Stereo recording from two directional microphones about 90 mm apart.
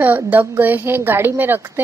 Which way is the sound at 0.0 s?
20° right (ahead or behind).